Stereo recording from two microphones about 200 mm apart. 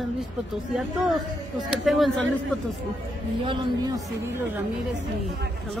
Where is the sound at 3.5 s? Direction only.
20° right (ahead or behind).